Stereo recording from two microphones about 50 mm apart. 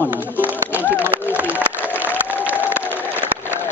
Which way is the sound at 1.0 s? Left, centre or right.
Right.